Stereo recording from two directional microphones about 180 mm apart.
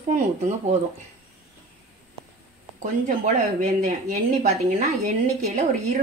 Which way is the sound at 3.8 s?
40° right (ahead or behind).